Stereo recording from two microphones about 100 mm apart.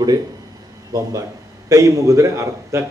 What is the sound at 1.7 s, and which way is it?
Speech, 35° right (ahead or behind).